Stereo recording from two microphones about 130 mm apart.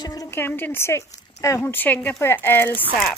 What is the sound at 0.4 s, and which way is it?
Speech, 15° left (ahead or behind).